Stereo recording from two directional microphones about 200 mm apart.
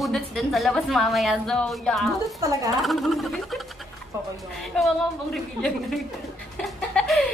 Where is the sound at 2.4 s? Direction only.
15° right (ahead or behind).